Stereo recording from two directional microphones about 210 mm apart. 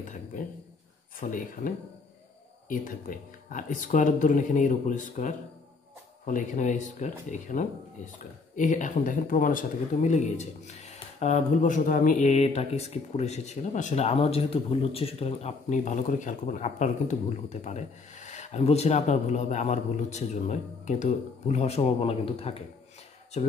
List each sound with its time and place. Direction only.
0.1 s speech: 35° left (ahead or behind)
2.7 s speech: 40° left (ahead or behind)